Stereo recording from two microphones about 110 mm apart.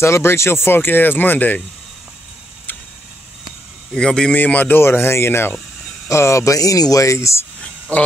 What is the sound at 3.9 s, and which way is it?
Speech, 5° left (ahead or behind).